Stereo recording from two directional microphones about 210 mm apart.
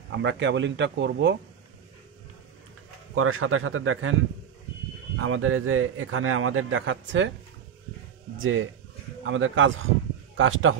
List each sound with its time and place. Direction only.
0.1 s speech: 60° right (ahead or behind)
3.2 s a man's voice: 85° right
5.1 s a man's voice: 80° right; by 7.3 s 60° right (ahead or behind)
8.4 s a man's voice: 70° right (ahead or behind)